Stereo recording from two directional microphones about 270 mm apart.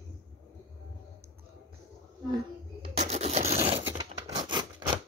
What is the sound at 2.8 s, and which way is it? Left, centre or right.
Scratch, right.